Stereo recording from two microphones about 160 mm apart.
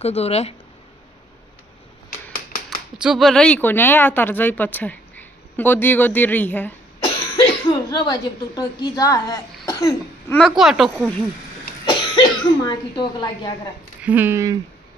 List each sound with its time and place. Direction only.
0.0 s speech: 40° left (ahead or behind)
3.0 s speech: centre (ahead or behind)
7.3 s a woman's voice: 25° left (ahead or behind)
10.3 s speech: centre (ahead or behind)
11.8 s speech: 30° left (ahead or behind)
14.0 s speech: 10° right (ahead or behind)